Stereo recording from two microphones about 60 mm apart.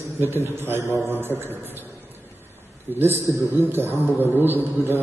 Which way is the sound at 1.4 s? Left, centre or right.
Right.